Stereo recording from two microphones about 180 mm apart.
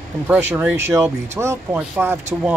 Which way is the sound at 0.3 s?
10° right (ahead or behind).